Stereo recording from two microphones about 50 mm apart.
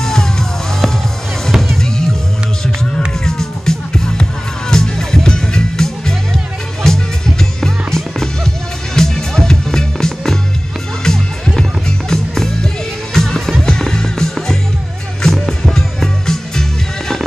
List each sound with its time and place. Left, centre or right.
0.0 s music: centre
3.3 s music: centre